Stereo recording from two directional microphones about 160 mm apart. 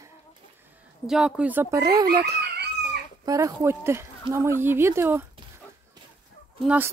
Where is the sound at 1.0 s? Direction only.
5° right (ahead or behind).